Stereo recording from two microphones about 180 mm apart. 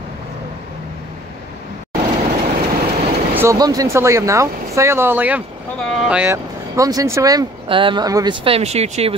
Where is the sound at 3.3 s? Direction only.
15° right (ahead or behind).